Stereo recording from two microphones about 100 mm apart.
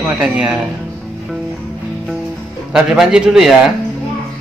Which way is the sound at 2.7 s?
5° right (ahead or behind).